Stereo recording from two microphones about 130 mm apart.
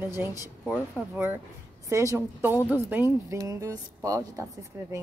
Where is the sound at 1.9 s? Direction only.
20° right (ahead or behind).